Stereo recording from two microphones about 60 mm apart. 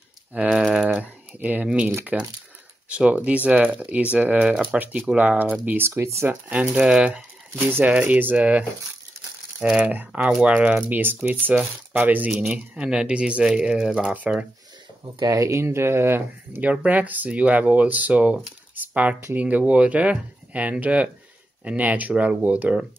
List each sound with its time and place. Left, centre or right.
0.3 s speech: right
0.6 s typing: centre
0.8 s a sound: right
2.1 s speech: right
5.8 s speech: right
6.8 s speech: centre
7.1 s a sound: centre
8.1 s speech: right
12.4 s speech: centre
15.2 s speech: right
16.6 s speech: right